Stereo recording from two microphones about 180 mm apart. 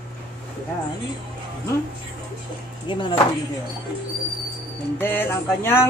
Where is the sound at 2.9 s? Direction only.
25° left (ahead or behind).